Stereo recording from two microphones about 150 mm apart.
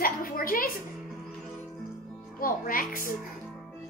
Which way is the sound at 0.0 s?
70° left (ahead or behind).